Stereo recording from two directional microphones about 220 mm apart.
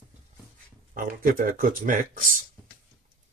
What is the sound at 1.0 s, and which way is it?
Speech, 40° right (ahead or behind).